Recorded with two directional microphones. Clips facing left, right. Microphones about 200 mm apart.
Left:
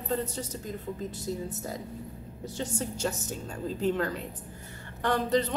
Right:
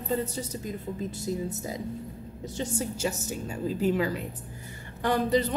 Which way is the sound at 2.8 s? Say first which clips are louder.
Right 2 dB; 5° right (ahead or behind).